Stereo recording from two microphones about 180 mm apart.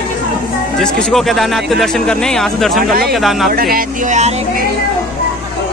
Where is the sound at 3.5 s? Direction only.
55° right (ahead or behind); by 4.6 s 40° right (ahead or behind).